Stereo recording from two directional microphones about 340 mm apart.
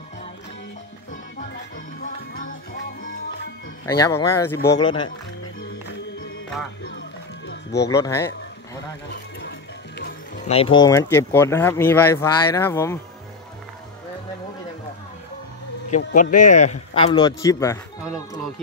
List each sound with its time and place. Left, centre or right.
2.0 s music: left
3.8 s speech: centre
7.4 s music: left
7.9 s speech: centre
9.1 s music: left
10.5 s speech: centre
16.0 s speech: left